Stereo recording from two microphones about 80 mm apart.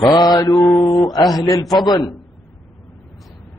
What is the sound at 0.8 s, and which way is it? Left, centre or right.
A man's voice, left.